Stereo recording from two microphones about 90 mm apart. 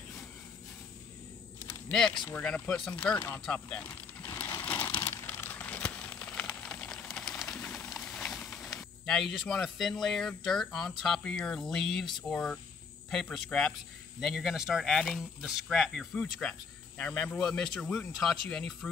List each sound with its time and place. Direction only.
1.9 s speech: 10° left (ahead or behind)
4.6 s crumpling: 20° left (ahead or behind); by 7.6 s 5° left (ahead or behind)
7.6 s a sound: 15° left (ahead or behind)
8.7 s speech: 5° left (ahead or behind)
14.2 s speech: centre (ahead or behind)